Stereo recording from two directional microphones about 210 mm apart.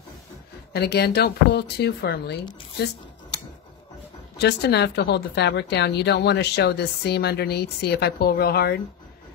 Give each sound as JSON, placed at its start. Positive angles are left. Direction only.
{"t": 0.7, "sound": "a woman's voice", "side_deg": 50}
{"t": 4.4, "sound": "a woman's voice", "side_deg": 50}